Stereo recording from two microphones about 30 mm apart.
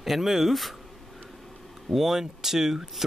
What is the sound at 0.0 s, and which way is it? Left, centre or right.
Speech, centre.